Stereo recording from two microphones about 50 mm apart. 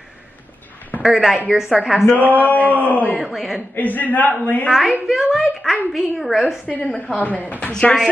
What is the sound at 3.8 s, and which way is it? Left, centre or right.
Speech, left.